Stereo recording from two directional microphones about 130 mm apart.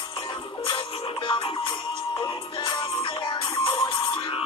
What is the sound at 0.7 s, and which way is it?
Music, 40° left (ahead or behind).